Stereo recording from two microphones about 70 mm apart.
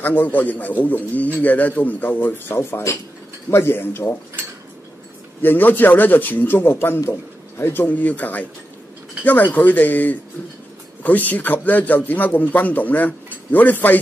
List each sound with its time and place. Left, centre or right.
0.0 s speech: left
5.4 s speech: left